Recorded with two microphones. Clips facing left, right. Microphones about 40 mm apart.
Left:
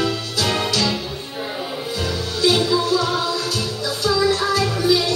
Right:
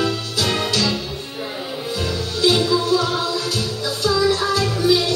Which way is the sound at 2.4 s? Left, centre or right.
Centre.